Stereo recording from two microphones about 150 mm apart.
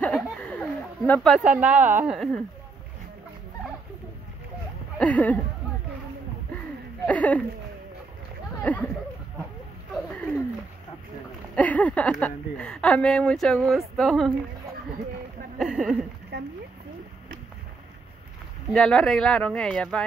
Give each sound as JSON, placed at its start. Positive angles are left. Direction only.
{"t": 0.0, "sound": "a sound", "side_deg": 10}
{"t": 1.3, "sound": "speech", "side_deg": -10}
{"t": 4.9, "sound": "speech", "side_deg": 10}
{"t": 7.1, "sound": "speech", "side_deg": 10}
{"t": 8.6, "sound": "speech", "side_deg": 10}
{"t": 11.5, "sound": "speech", "side_deg": 10}
{"t": 15.6, "sound": "speech", "side_deg": -5}
{"t": 16.3, "sound": "a sound", "side_deg": -90}
{"t": 18.7, "sound": "speech", "side_deg": 5}